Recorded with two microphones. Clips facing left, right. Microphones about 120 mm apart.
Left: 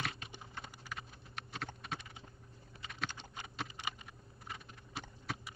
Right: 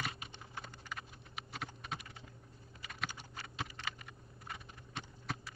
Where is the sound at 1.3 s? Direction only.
Centre (ahead or behind).